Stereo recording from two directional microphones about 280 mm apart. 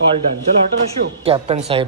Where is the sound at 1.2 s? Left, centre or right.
Right.